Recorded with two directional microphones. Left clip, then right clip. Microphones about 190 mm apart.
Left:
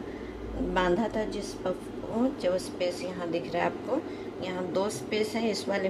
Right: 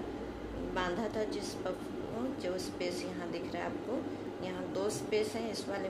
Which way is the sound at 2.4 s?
25° right (ahead or behind).